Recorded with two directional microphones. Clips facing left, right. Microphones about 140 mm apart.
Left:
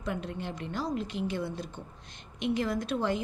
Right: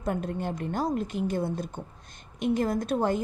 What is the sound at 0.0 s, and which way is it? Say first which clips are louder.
A woman's voice: right 5 dB; 45° right (ahead or behind).